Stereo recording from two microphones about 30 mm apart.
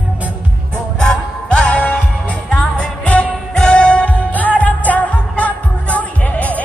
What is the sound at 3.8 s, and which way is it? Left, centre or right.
Music, left.